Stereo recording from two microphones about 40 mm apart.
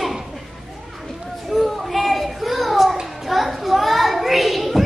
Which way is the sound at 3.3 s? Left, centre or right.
Centre.